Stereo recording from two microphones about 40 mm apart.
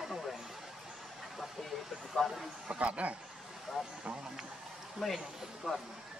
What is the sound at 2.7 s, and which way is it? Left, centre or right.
Speech, right.